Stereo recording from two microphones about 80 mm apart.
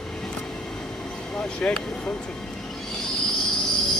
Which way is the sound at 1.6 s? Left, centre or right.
Centre.